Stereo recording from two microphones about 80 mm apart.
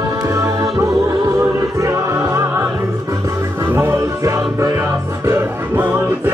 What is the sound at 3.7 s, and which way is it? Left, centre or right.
Music, right.